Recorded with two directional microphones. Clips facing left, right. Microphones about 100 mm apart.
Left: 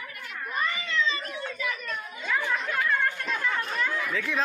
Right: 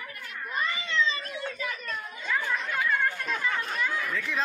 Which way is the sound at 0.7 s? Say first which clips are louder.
Even; 30° right (ahead or behind).